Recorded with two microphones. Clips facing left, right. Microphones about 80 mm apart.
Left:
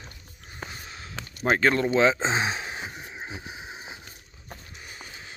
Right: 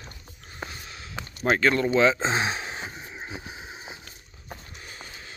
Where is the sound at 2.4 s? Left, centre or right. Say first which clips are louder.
Even; centre.